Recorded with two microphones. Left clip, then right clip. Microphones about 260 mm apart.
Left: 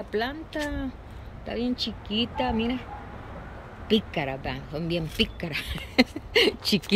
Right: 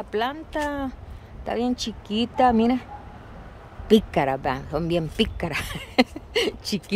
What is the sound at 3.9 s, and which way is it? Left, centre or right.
Speech, centre.